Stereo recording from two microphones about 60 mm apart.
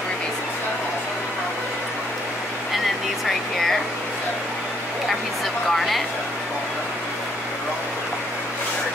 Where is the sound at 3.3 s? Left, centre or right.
Centre.